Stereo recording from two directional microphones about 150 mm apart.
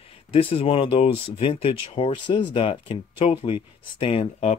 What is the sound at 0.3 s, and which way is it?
Speech, 40° left (ahead or behind).